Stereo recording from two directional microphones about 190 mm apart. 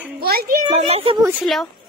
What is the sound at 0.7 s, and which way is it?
Speech, 30° right (ahead or behind).